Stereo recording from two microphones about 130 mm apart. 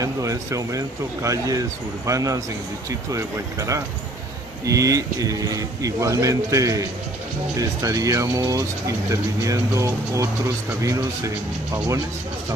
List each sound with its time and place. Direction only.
0.0 s speech: 25° right (ahead or behind)